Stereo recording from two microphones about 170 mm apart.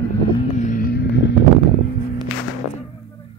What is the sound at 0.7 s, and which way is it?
Music, 55° left (ahead or behind).